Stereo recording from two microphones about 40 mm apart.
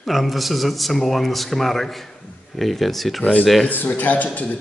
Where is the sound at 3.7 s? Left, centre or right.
Left.